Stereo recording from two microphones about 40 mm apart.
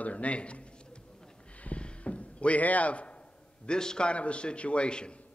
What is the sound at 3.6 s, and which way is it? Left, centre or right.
A man's voice, centre.